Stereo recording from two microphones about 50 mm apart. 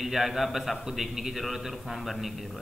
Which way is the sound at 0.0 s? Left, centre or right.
Centre.